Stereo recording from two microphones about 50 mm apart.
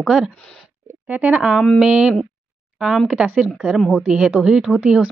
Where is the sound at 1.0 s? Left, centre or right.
Right.